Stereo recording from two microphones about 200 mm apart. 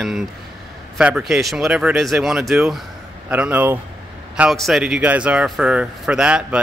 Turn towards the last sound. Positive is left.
turn(degrees=-5)  # may be behind; listen again after turning